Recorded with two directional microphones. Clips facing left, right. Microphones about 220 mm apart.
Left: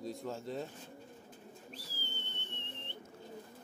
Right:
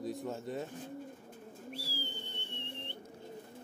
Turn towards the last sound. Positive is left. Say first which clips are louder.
# right 3 dB
turn(degrees=-15)  # may be behind; listen again after turning